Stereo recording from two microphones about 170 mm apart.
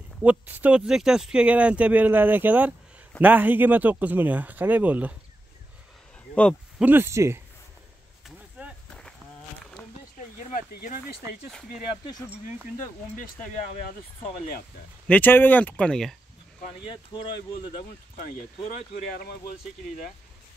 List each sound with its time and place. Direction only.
0.2 s speech: 10° right (ahead or behind)
6.8 s speech: 10° right (ahead or behind)
8.6 s a sound: 10° right (ahead or behind)
10.5 s speech: 55° left (ahead or behind)
15.0 s speech: 10° left (ahead or behind)
16.9 s speech: 30° left (ahead or behind)